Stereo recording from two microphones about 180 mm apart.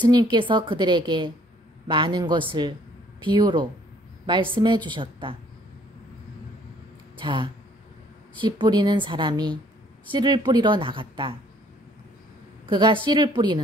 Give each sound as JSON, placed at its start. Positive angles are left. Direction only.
{"t": 0.0, "sound": "a woman's voice", "side_deg": -25}
{"t": 7.2, "sound": "a woman's voice", "side_deg": -25}
{"t": 12.6, "sound": "a woman's voice", "side_deg": -25}